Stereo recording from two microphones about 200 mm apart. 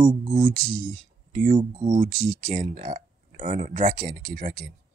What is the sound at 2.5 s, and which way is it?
Speech, 40° right (ahead or behind).